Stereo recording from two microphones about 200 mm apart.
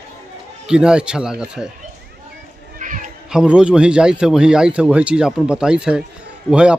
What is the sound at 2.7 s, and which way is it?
Children playing, 40° right (ahead or behind).